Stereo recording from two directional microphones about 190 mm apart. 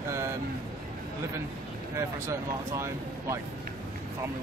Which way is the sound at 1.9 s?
15° right (ahead or behind).